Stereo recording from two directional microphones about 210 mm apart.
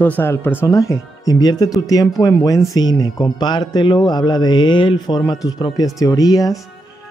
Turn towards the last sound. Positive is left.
turn(degrees=15)  # may be behind; listen again after turning